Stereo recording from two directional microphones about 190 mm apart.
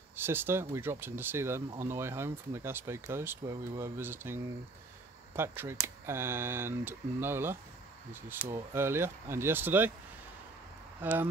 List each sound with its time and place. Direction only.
0.1 s speech: 10° right (ahead or behind)
11.0 s speech: 10° right (ahead or behind)